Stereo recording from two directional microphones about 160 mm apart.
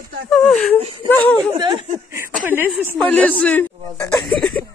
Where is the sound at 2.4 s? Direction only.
10° right (ahead or behind).